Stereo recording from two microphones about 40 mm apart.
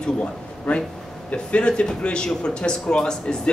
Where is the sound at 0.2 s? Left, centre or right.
Left.